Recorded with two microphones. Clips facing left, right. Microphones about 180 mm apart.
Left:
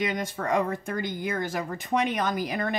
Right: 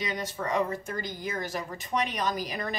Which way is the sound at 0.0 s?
50° left (ahead or behind).